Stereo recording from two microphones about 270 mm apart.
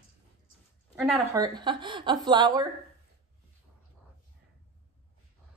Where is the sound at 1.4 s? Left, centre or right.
Centre.